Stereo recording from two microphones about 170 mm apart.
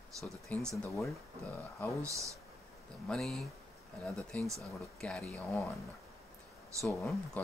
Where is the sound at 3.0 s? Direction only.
Centre (ahead or behind).